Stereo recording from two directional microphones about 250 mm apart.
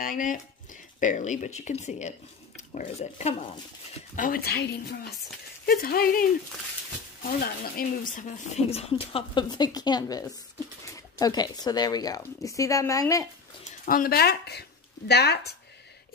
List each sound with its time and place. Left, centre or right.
0.0 s speech: left
4.2 s a woman's voice: left
7.2 s speech: left; by 13.3 s centre
13.8 s speech: left